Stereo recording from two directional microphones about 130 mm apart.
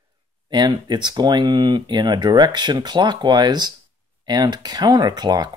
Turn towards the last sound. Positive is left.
turn(degrees=-30)  # may be behind; listen again after turning